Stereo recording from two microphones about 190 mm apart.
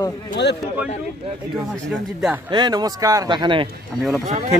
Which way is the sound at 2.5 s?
20° right (ahead or behind).